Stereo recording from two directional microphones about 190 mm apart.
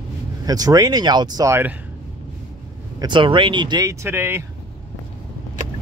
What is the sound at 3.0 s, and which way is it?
Speech, 25° right (ahead or behind).